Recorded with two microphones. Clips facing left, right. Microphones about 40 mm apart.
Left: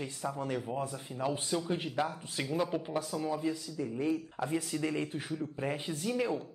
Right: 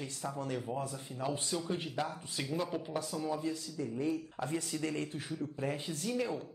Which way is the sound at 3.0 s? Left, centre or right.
Centre.